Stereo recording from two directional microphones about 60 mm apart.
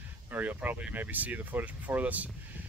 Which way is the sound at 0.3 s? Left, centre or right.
Right.